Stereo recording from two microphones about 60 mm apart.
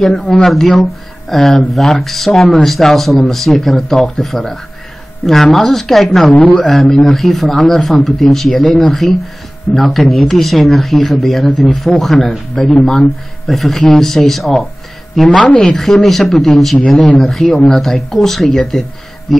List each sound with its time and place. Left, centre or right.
0.3 s speech: centre
15.3 s a woman's voice: centre
15.7 s speech: centre